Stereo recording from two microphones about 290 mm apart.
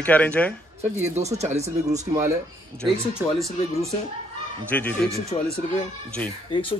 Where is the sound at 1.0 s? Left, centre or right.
Right.